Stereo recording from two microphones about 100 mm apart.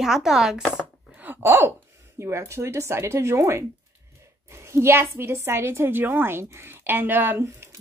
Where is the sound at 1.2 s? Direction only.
20° right (ahead or behind).